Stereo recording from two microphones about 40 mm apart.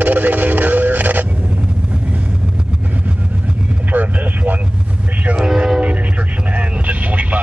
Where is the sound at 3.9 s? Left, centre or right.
Right.